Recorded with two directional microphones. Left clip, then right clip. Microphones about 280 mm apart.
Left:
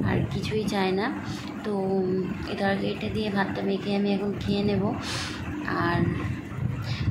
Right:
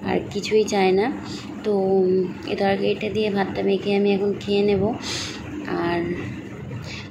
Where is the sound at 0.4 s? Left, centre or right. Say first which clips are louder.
Right 11 dB; centre.